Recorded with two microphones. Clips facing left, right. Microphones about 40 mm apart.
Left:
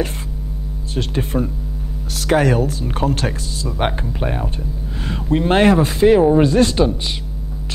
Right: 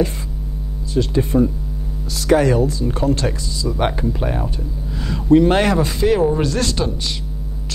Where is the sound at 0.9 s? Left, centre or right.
Left.